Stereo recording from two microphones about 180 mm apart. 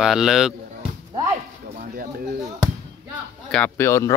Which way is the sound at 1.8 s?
50° right (ahead or behind).